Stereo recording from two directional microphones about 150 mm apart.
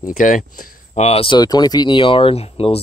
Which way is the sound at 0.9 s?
45° left (ahead or behind).